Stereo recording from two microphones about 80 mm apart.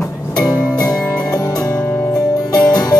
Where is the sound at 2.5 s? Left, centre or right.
Left.